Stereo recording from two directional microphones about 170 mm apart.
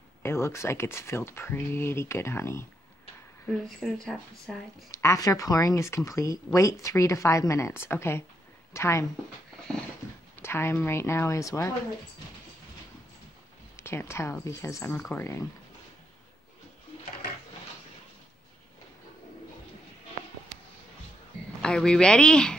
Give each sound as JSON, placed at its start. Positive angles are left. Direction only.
{"t": 0.2, "sound": "speech", "side_deg": 15}
{"t": 3.6, "sound": "speech", "side_deg": 0}
{"t": 4.9, "sound": "speech", "side_deg": 20}
{"t": 10.0, "sound": "a sound", "side_deg": 15}
{"t": 10.4, "sound": "speech", "side_deg": 15}
{"t": 13.7, "sound": "speech", "side_deg": 15}
{"t": 21.5, "sound": "speech", "side_deg": 5}